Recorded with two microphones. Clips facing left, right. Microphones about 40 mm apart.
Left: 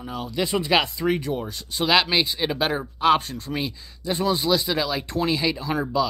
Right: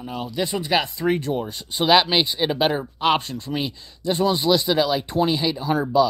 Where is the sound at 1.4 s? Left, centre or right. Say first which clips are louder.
Right 2 dB; centre.